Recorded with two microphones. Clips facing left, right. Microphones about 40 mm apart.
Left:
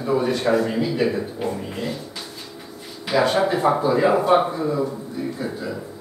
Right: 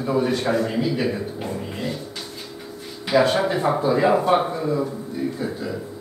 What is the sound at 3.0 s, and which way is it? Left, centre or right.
Speech, centre.